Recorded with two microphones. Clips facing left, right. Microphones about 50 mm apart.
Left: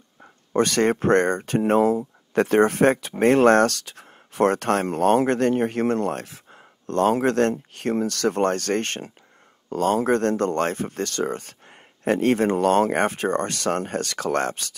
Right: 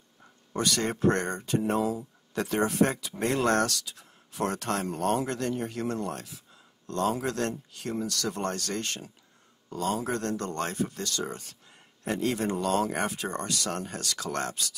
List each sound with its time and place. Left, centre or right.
0.5 s speech: left